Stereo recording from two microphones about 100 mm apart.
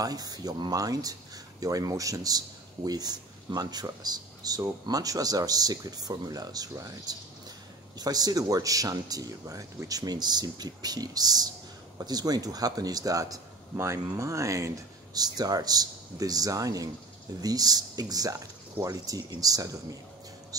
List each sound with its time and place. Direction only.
0.0 s a man's voice: 40° right (ahead or behind)
15.1 s a man's voice: 40° right (ahead or behind)